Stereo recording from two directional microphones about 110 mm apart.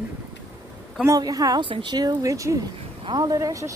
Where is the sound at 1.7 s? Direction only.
50° right (ahead or behind).